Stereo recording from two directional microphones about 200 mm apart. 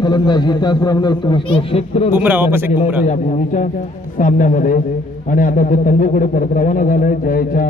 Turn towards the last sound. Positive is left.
turn(degrees=45)  # may be behind; listen again after turning